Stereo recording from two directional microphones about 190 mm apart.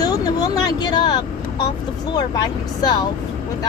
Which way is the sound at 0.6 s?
20° left (ahead or behind).